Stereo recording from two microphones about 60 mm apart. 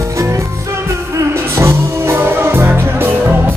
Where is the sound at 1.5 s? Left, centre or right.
Right.